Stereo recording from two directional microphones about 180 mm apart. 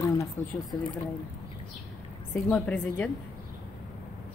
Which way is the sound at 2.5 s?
5° left (ahead or behind).